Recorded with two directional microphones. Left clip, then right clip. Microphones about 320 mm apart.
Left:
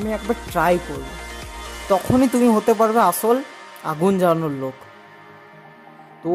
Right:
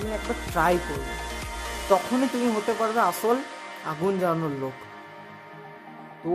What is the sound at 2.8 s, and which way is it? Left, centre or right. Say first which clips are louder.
Speech: left 7 dB; left.